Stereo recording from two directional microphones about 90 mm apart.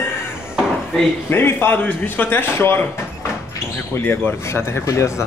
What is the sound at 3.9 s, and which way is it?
A man's voice, 25° left (ahead or behind).